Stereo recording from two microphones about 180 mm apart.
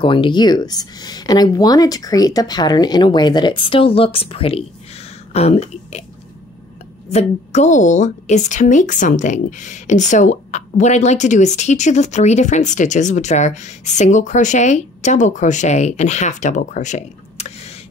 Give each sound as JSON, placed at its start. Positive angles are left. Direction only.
{"t": 0.0, "sound": "speech", "side_deg": 30}
{"t": 7.1, "sound": "a woman's voice", "side_deg": 40}